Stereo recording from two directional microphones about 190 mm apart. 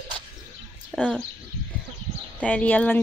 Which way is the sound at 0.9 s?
5° left (ahead or behind).